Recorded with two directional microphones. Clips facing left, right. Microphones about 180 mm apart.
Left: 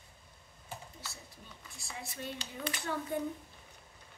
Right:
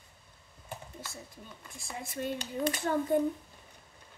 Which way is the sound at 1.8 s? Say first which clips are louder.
Right 7 dB; 50° right (ahead or behind).